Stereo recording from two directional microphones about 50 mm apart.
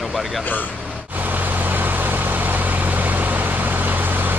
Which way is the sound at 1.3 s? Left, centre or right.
Right.